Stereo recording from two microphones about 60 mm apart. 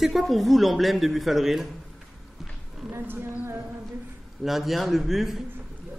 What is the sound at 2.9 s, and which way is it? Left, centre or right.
Speech, right.